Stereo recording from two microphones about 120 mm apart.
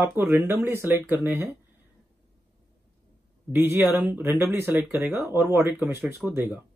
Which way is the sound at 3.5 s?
20° right (ahead or behind).